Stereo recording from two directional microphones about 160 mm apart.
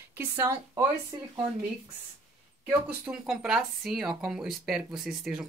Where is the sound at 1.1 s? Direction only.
30° right (ahead or behind).